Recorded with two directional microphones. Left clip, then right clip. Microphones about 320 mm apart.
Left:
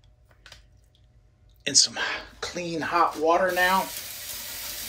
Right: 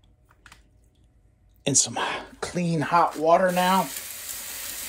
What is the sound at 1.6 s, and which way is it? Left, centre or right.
Speech, centre.